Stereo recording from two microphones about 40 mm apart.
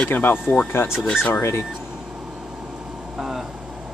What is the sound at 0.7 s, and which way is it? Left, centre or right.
Speech, left.